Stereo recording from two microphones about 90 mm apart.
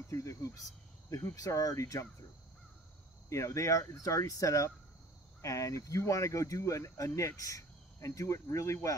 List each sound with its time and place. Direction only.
0.1 s speech: 35° left (ahead or behind)
3.3 s speech: 35° left (ahead or behind)